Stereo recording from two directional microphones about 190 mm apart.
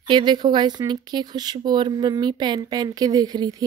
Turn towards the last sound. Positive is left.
turn(degrees=-20)  # may be behind; listen again after turning